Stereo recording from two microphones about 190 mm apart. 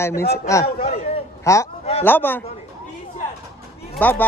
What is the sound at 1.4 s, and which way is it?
A man's voice, 15° left (ahead or behind).